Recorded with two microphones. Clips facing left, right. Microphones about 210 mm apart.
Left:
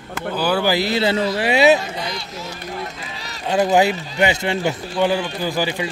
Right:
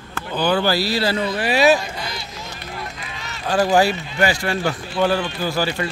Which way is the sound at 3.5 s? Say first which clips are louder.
Left 1 dB; 20° left (ahead or behind).